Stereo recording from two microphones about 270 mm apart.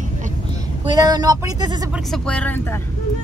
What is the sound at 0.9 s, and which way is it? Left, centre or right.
Speech, centre.